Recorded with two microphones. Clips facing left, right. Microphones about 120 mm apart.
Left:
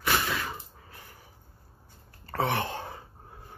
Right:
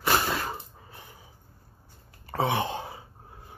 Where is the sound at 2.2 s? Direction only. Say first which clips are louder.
Right 2 dB; 15° right (ahead or behind).